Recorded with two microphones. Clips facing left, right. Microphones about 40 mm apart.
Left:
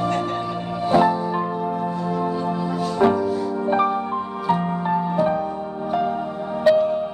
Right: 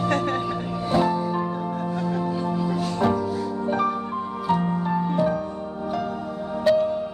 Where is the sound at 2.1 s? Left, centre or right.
Left.